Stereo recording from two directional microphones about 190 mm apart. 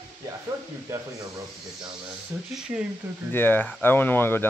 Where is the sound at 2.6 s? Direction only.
5° right (ahead or behind).